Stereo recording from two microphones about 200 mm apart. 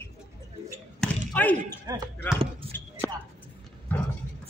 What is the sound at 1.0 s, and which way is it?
Basketball bounce, 10° left (ahead or behind).